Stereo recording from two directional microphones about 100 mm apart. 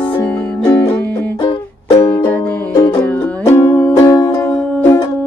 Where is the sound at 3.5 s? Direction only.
30° left (ahead or behind).